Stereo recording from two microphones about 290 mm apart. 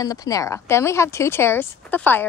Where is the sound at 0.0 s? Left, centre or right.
Centre.